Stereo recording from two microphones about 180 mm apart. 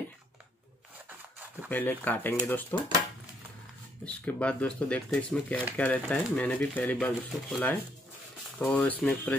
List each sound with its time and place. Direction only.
1.7 s speech: 10° left (ahead or behind)
4.0 s speech: 5° left (ahead or behind)